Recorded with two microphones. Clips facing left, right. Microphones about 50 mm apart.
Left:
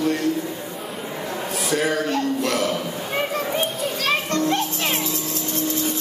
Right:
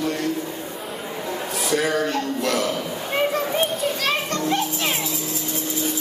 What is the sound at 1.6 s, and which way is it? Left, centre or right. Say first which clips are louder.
Speech: even; left.